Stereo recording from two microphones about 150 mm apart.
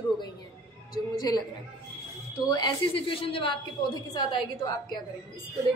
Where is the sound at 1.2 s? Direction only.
25° left (ahead or behind).